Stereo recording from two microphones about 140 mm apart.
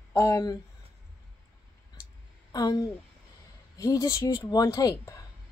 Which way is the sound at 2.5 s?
25° left (ahead or behind).